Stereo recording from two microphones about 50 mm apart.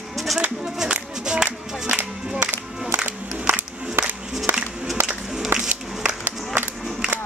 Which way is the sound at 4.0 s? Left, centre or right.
Right.